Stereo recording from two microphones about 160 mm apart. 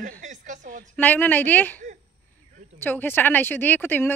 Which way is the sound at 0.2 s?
50° right (ahead or behind).